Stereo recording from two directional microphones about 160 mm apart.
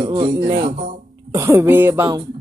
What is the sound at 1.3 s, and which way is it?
Speech, 15° right (ahead or behind).